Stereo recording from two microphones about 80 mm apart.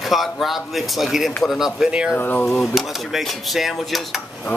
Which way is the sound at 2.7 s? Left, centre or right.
Centre.